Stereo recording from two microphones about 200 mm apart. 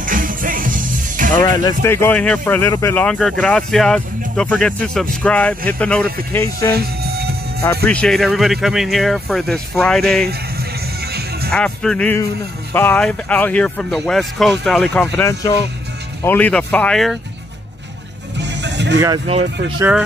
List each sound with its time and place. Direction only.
0.0 s music: 45° right (ahead or behind)
1.3 s speech: 20° left (ahead or behind)
6.7 s music: 50° right (ahead or behind)
7.8 s speech: 5° left (ahead or behind)
11.5 s speech: 5° left (ahead or behind)
18.4 s music: 60° right (ahead or behind)